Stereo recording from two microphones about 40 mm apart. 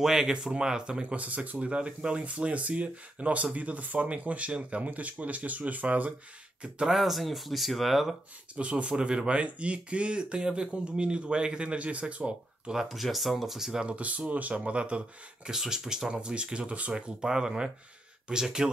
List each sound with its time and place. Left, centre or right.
0.0 s speech: centre
1.0 s speech: right
6.9 s speech: centre
8.5 s speech: right
12.7 s speech: centre
13.8 s speech: right
15.5 s speech: centre
16.1 s speech: right
16.9 s speech: centre